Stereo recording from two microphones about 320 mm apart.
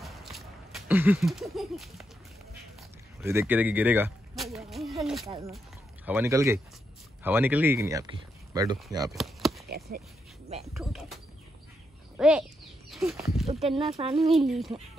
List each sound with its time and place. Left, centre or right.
0.0 s a sound: centre
3.2 s speech: centre
9.1 s chop: centre
9.7 s a sound: right
10.8 s speech: centre
12.2 s speech: centre
13.7 s speech: centre
14.1 s speech: centre